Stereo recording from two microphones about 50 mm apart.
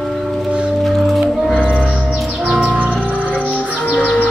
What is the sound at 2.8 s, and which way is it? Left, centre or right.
Music, right.